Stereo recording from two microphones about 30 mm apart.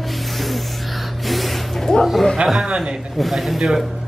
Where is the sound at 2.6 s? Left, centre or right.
Right.